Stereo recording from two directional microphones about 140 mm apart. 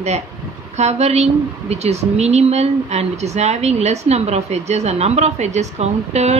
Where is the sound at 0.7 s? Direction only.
50° right (ahead or behind).